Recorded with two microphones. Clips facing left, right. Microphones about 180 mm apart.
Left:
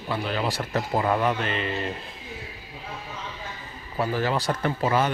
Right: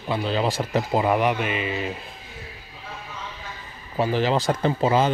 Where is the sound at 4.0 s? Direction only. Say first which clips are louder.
Right 4 dB; 20° right (ahead or behind).